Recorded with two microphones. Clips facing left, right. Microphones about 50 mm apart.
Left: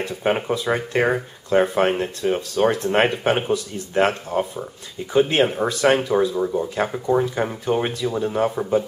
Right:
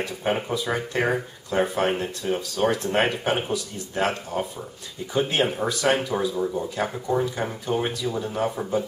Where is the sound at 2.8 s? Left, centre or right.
Left.